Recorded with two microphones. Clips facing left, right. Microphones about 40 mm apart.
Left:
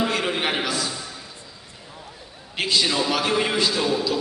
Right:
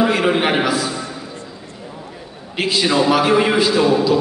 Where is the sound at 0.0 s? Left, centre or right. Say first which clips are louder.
Right 7 dB; centre.